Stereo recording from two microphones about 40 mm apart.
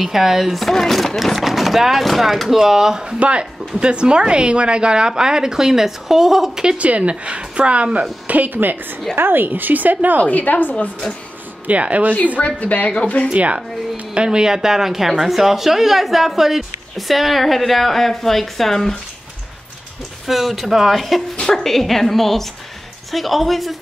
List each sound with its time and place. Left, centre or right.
0.0 s a woman's voice: centre
2.5 s speech: centre
3.2 s a woman's voice: right; by 6.6 s centre
6.8 s speech: right
8.3 s a woman's voice: right
9.1 s a woman's voice: right
10.2 s a woman's voice: left
11.6 s speech: right
12.5 s speech: left
13.3 s speech: right
14.1 s a woman's voice: right; by 18.9 s centre
20.2 s a woman's voice: centre